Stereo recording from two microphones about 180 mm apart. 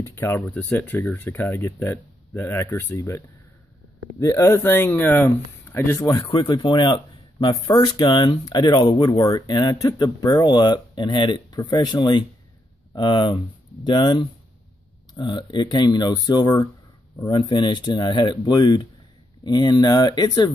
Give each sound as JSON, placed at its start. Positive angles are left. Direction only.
{"t": 0.0, "sound": "speech", "side_deg": 10}